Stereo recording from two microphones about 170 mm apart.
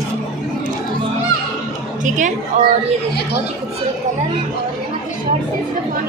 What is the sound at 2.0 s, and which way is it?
Speech, 45° right (ahead or behind).